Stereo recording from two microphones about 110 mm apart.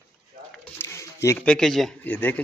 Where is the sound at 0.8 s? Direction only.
25° left (ahead or behind).